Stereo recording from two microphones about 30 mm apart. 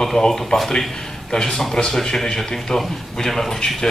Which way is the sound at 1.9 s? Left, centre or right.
Centre.